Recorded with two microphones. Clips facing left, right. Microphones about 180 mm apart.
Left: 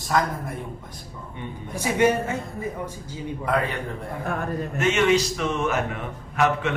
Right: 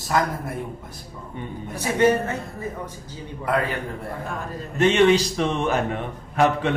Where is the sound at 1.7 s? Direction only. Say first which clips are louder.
Right 1 dB; 10° left (ahead or behind).